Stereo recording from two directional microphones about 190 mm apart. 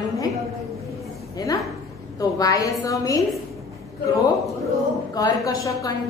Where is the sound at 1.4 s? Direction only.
20° left (ahead or behind).